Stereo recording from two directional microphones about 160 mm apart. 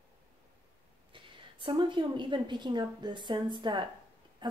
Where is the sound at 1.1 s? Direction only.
30° right (ahead or behind).